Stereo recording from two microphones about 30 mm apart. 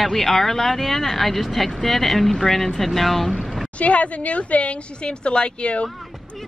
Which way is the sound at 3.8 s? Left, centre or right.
Left.